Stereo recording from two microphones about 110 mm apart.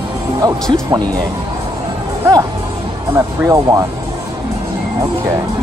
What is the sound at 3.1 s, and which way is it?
Speech, 30° right (ahead or behind).